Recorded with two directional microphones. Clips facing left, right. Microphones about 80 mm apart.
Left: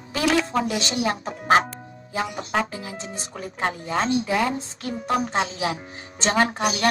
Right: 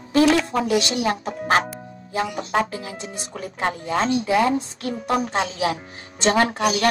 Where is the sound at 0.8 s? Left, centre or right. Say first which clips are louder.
Right 2 dB; left.